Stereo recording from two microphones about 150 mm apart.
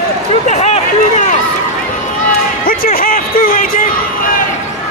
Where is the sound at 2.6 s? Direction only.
75° left (ahead or behind).